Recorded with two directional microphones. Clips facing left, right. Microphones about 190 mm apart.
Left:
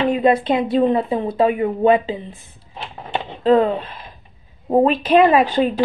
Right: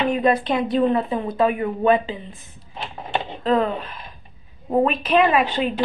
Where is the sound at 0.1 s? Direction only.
25° left (ahead or behind).